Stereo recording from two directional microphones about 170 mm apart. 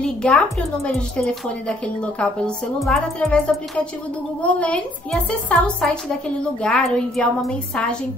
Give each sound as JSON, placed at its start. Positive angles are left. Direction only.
{"t": 0.0, "sound": "a woman's voice", "side_deg": 5}